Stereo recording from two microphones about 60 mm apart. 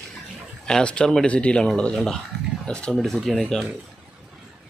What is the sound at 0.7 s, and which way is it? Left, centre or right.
Speech, centre.